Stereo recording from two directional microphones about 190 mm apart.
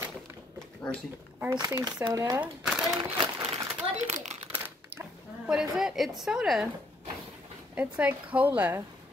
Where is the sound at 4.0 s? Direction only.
40° right (ahead or behind).